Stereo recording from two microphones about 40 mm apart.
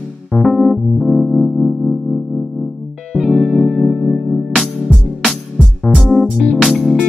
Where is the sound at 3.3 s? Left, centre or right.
Centre.